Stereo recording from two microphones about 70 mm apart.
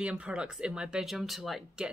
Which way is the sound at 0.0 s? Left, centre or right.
Centre.